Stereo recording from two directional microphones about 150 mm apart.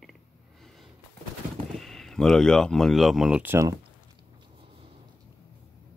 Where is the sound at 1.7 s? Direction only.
Centre (ahead or behind); by 3.8 s 15° right (ahead or behind).